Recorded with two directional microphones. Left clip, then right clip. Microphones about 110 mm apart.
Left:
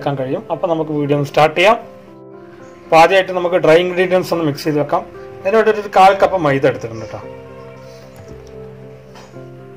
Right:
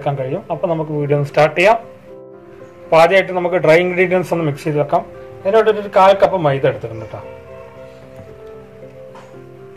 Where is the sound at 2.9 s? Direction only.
90° left.